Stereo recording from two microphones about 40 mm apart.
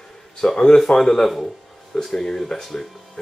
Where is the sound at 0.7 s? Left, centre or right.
Centre.